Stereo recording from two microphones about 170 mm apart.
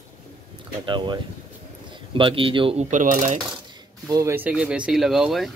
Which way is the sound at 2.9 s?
50° right (ahead or behind).